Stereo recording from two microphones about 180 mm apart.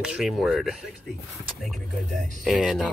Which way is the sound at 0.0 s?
5° right (ahead or behind).